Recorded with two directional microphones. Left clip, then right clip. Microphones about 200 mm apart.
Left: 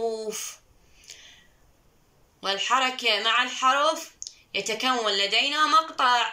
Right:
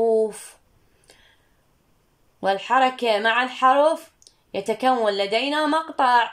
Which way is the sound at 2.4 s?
55° right (ahead or behind).